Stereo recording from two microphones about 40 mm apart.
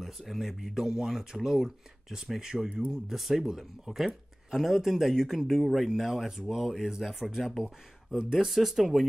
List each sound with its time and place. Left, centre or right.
0.0 s speech: centre
0.8 s speech: centre
7.5 s speech: centre
8.2 s speech: centre